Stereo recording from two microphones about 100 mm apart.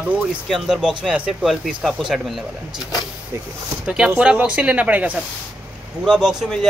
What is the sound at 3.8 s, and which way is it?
A man's voice, 10° right (ahead or behind).